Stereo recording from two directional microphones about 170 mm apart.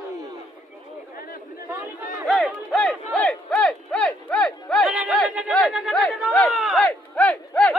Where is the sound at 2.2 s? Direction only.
5° left (ahead or behind).